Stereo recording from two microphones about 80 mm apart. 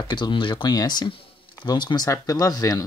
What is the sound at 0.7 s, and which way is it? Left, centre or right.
Speech, left.